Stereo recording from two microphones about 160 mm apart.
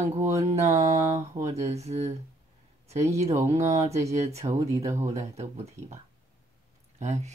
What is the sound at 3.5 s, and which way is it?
Speech, 45° right (ahead or behind).